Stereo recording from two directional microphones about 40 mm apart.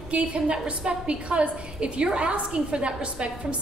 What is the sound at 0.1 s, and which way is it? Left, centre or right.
A woman's voice, right.